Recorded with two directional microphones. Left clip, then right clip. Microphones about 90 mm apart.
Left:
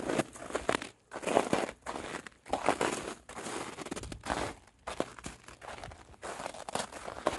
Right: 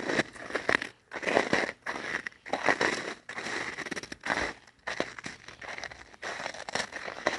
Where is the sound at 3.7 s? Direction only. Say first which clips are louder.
Right 5 dB; 30° left (ahead or behind).